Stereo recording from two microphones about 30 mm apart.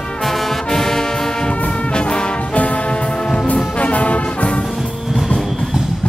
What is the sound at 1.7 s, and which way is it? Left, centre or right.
Brass instrument, left.